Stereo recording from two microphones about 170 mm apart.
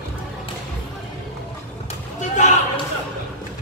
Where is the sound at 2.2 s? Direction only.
45° left (ahead or behind).